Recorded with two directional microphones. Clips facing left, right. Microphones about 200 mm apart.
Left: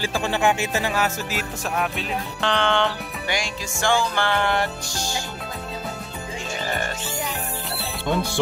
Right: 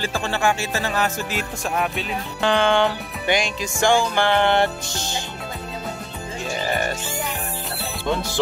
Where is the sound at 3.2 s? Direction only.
20° right (ahead or behind).